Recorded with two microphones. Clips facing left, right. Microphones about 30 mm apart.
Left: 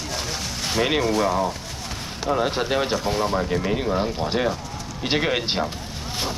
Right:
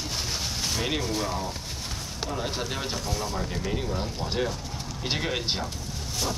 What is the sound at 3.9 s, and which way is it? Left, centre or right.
Speech, left.